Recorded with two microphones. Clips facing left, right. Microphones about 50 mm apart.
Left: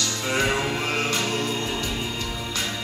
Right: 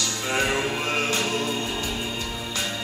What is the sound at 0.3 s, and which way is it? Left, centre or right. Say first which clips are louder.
Music: left 1 dB; centre.